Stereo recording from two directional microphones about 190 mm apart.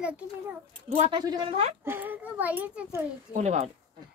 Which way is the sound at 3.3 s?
35° right (ahead or behind).